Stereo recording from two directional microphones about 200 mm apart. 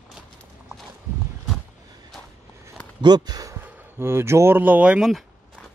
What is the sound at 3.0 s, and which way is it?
Speech, 20° right (ahead or behind).